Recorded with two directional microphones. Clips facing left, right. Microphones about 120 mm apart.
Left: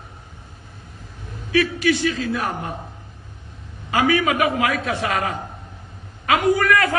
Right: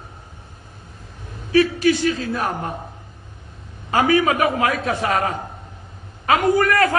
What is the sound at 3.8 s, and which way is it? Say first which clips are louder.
A man's voice: right 2 dB; 40° right (ahead or behind).